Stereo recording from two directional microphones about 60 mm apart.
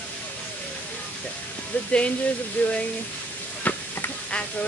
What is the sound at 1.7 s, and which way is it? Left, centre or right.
Speech, left.